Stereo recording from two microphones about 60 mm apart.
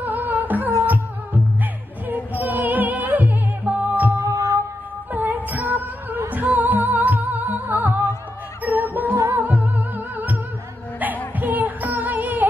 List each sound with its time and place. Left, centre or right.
0.0 s music: right
4.2 s music: right
5.1 s music: right
9.1 s music: right
9.4 s music: right